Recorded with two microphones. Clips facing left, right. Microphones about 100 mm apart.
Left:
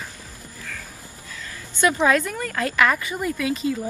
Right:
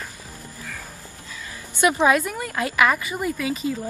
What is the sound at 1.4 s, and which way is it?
A woman's voice, 15° right (ahead or behind).